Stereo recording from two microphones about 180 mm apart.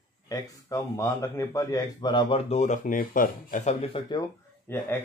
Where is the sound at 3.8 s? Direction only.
30° left (ahead or behind).